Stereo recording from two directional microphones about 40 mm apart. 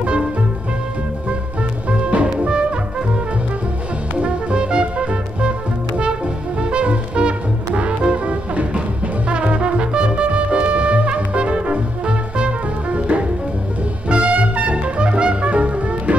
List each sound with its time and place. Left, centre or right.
0.0 s music: right
1.9 s music: right
4.2 s music: right
6.6 s music: right